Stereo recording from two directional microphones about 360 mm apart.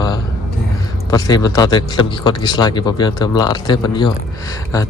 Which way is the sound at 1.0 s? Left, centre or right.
Centre.